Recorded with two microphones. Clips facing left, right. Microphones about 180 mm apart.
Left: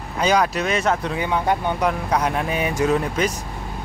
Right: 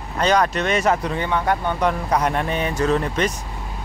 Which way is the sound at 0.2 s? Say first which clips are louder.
Right 1 dB; 5° left (ahead or behind).